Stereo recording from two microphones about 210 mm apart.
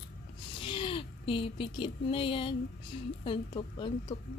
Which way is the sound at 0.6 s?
25° left (ahead or behind).